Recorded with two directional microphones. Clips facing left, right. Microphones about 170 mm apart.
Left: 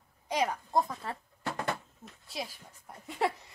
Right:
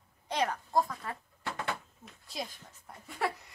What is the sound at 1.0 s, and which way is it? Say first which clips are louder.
Speech: left 1 dB; 30° left (ahead or behind).